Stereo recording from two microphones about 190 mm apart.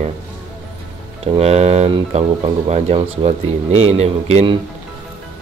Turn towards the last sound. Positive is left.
turn(degrees=-35)  # may be behind; listen again after turning